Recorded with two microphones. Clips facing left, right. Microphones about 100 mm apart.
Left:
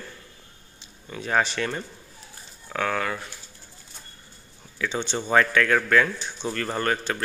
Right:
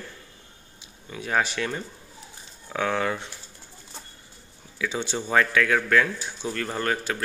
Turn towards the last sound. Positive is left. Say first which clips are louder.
# left 1 dB
turn(degrees=0)  # may be behind; listen again after turning